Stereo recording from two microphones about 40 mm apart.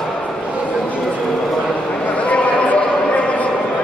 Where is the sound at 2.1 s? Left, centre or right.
Left.